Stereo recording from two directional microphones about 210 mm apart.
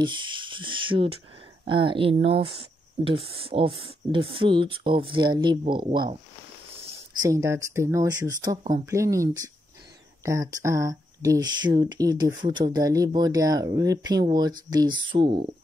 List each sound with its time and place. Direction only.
0.0 s speech: 25° right (ahead or behind)
6.8 s a sound: 30° right (ahead or behind)
7.2 s speech: 15° right (ahead or behind)